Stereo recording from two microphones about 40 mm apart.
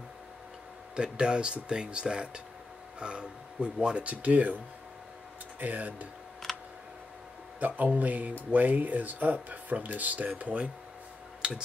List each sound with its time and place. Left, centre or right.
0.9 s speech: right
5.6 s speech: right
6.5 s a sound: centre
7.6 s speech: right
11.4 s speech: right